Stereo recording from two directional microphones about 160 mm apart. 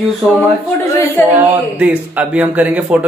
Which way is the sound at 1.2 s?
15° left (ahead or behind).